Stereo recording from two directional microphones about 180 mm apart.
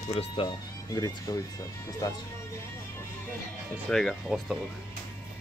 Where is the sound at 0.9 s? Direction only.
20° left (ahead or behind).